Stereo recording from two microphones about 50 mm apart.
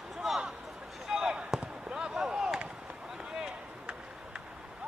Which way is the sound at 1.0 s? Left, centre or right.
Centre.